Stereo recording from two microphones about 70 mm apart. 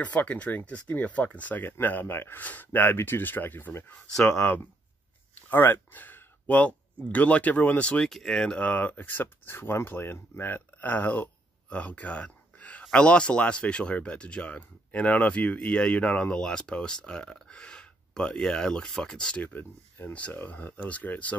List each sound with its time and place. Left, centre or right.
0.0 s speech: left
8.1 s speech: centre
8.5 s speech: left